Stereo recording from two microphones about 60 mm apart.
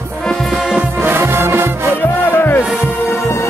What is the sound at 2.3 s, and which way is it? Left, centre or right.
Music, left.